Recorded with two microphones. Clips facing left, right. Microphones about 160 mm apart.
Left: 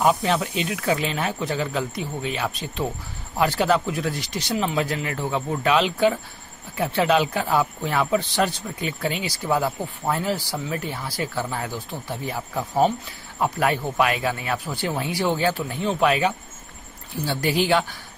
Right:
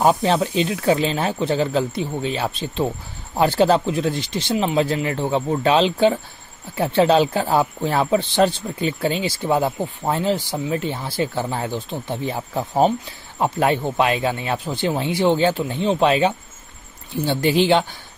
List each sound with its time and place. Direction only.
0.0 s speech: 30° right (ahead or behind)